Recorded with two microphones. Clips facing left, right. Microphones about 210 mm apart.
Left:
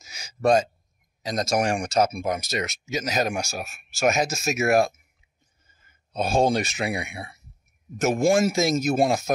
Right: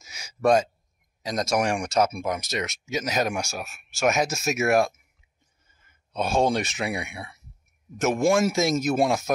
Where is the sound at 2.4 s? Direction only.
Centre (ahead or behind).